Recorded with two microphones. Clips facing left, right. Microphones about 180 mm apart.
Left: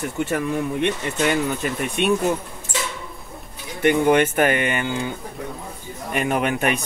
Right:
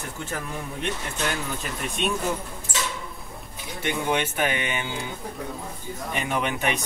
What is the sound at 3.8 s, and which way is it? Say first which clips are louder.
Speech: left 9 dB; 50° left (ahead or behind).